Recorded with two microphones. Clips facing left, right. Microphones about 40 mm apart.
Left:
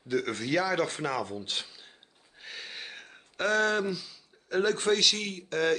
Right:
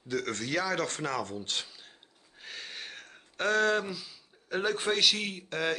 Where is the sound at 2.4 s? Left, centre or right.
Centre.